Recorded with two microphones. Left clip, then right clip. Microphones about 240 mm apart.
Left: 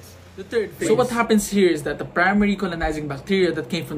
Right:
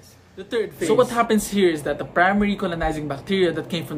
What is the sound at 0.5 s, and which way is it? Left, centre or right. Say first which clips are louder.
A man's voice: right 1 dB; centre.